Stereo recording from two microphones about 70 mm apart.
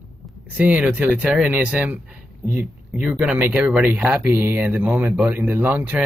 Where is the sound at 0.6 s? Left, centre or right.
Right.